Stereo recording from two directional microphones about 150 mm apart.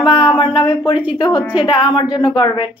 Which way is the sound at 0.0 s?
30° left (ahead or behind).